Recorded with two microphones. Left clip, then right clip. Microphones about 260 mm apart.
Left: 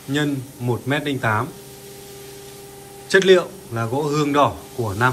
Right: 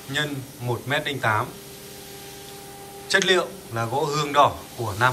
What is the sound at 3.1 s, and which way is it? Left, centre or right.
Speech, centre.